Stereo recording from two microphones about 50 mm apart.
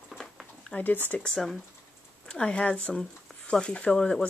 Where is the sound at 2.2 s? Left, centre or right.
Left.